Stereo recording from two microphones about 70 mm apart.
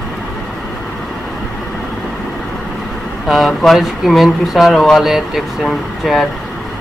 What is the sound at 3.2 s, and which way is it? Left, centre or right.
Speech, centre.